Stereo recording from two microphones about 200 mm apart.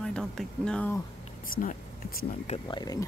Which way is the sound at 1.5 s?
45° left (ahead or behind).